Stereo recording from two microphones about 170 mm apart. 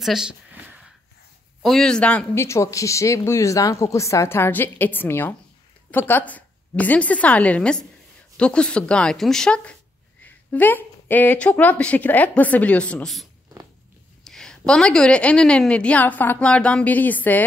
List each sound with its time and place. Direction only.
0.0 s speech: 5° right (ahead or behind)
1.6 s a woman's voice: centre (ahead or behind)